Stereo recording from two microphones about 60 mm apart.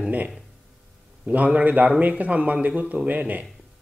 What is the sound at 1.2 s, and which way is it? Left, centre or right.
Speech, right.